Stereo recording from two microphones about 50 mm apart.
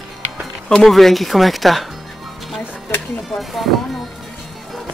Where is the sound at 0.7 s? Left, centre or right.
Centre.